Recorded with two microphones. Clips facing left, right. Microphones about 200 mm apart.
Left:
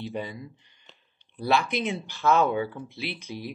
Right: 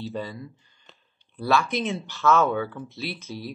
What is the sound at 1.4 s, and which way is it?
Speech, 15° left (ahead or behind).